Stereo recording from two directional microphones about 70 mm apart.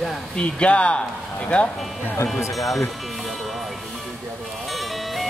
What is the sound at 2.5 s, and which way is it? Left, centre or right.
Speech, centre.